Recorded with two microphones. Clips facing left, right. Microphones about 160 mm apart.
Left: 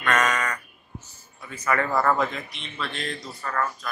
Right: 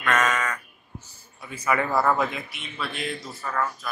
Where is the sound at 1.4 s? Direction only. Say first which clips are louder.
Even; 10° right (ahead or behind).